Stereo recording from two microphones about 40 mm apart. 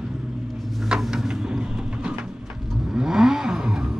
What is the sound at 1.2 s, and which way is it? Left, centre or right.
Vehicle, centre.